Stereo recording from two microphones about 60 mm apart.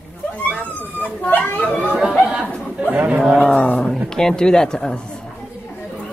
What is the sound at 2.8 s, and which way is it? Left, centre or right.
Speech, right.